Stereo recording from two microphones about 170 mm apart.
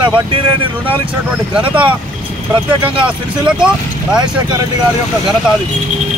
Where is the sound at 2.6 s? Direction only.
30° right (ahead or behind).